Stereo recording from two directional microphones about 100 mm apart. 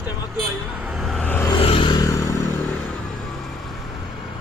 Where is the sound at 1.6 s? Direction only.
65° left (ahead or behind).